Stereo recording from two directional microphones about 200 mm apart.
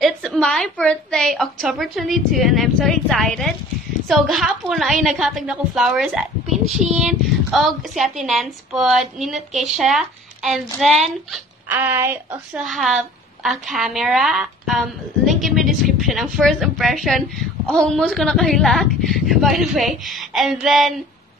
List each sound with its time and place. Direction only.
0.0 s a woman's voice: centre (ahead or behind)
7.1 s a woman's voice: centre (ahead or behind)